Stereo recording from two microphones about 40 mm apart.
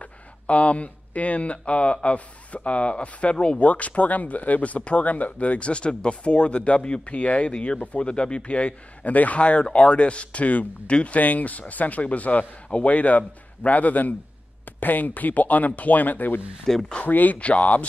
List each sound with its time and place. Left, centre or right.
0.0 s speech: left
16.7 s speech: centre
17.0 s speech: left
17.4 s speech: left